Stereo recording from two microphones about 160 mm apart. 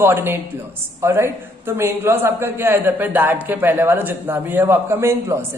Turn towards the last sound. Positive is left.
turn(degrees=-15)  # may be behind; listen again after turning